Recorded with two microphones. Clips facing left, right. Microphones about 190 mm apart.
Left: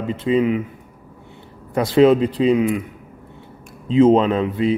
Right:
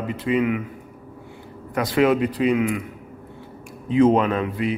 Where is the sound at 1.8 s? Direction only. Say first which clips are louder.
Left 5 dB; 25° left (ahead or behind).